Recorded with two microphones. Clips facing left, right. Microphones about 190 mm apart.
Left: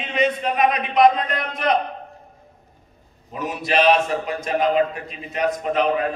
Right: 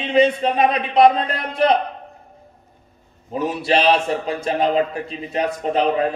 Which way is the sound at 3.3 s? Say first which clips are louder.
Right 2 dB; 30° right (ahead or behind).